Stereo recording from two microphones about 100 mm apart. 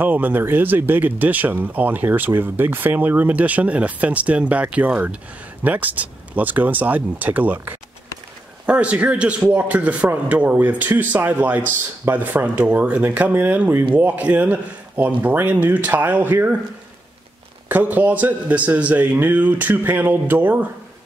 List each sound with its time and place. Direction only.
0.0 s speech: 20° right (ahead or behind)
17.6 s speech: 15° right (ahead or behind)